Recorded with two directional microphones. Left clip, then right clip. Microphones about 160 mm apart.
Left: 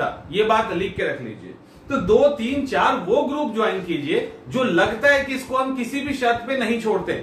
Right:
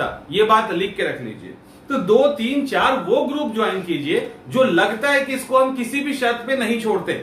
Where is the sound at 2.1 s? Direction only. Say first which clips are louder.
Right 1 dB; 5° right (ahead or behind).